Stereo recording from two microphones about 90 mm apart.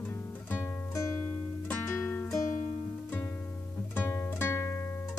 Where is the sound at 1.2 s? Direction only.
20° left (ahead or behind).